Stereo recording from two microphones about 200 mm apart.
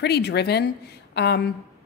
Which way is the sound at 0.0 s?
55° left (ahead or behind).